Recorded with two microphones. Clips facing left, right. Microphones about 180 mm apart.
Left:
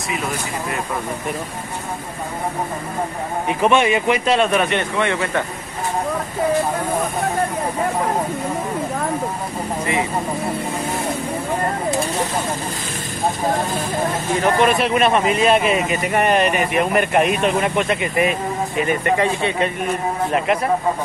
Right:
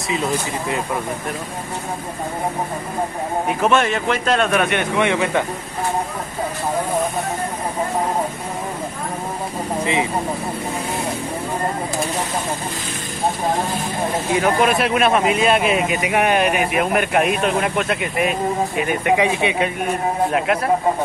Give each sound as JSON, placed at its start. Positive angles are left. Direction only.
{"t": 3.4, "sound": "speech", "side_deg": 0}
{"t": 4.9, "sound": "speech", "side_deg": -15}
{"t": 14.3, "sound": "speech", "side_deg": -5}
{"t": 20.3, "sound": "speech", "side_deg": 0}